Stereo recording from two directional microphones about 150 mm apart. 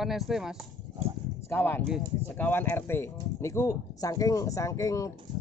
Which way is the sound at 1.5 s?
15° left (ahead or behind).